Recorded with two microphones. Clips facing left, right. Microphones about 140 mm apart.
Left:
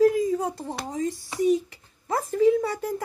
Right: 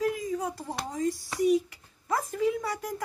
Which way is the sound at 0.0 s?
30° left (ahead or behind).